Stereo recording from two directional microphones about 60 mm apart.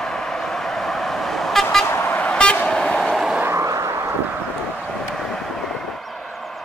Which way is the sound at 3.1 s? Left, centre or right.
Centre.